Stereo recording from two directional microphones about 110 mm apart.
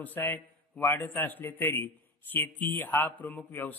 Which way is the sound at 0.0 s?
15° left (ahead or behind).